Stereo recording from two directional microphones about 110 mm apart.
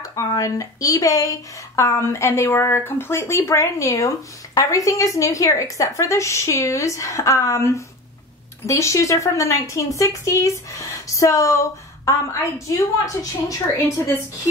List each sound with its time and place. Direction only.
0.0 s speech: 30° left (ahead or behind)